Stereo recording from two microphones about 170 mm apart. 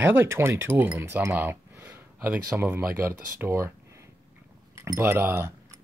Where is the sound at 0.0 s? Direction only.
10° right (ahead or behind).